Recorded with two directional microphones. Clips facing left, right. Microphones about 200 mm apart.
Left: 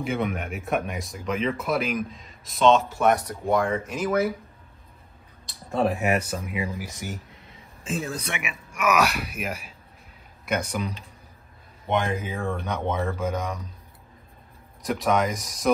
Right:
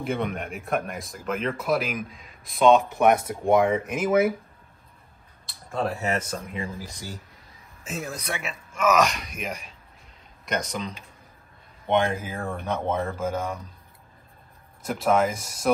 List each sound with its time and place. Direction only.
0.0 s speech: centre (ahead or behind)
2.6 s speech: 15° right (ahead or behind)
5.5 s speech: 15° left (ahead or behind)
7.8 s speech: 30° left (ahead or behind)
8.4 s speech: 15° left (ahead or behind)
11.9 s speech: centre (ahead or behind)
15.0 s speech: 5° right (ahead or behind)